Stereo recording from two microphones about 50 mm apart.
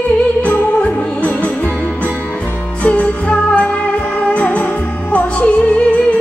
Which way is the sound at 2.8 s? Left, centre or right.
Left.